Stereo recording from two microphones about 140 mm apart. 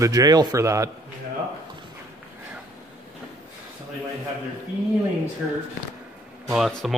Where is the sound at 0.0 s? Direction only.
25° right (ahead or behind).